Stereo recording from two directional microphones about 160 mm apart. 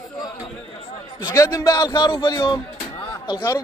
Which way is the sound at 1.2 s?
20° left (ahead or behind).